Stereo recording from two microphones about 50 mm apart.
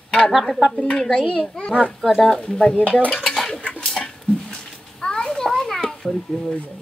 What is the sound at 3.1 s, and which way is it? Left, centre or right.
Dishes, centre.